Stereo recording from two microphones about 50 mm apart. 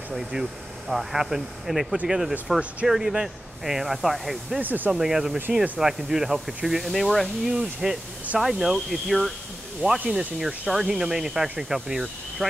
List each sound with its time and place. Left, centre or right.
0.1 s speech: centre
4.6 s speech: right
4.9 s speech: centre
7.5 s speech: centre